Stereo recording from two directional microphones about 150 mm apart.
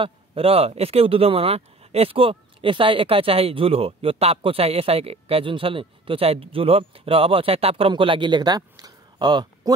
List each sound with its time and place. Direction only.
0.0 s speech: 40° right (ahead or behind)